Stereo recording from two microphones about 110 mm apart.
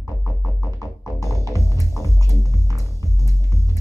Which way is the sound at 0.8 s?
30° left (ahead or behind).